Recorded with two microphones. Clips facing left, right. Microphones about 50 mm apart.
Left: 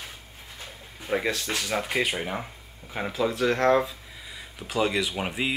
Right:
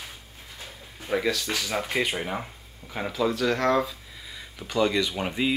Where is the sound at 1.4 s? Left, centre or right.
Centre.